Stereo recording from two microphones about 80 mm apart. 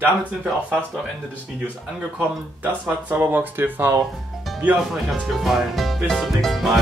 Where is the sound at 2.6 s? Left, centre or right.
Right.